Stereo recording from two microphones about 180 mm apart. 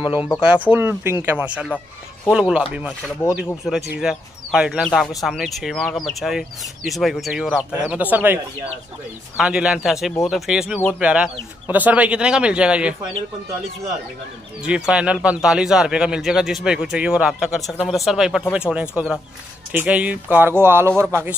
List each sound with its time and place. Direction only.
0.0 s speech: 30° left (ahead or behind)
0.4 s speech: 10° right (ahead or behind)
3.6 s speech: centre (ahead or behind)
9.4 s speech: 5° right (ahead or behind)
14.7 s speech: 5° right (ahead or behind)